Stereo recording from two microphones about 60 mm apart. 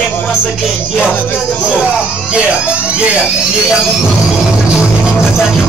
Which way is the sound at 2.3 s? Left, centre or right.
Centre.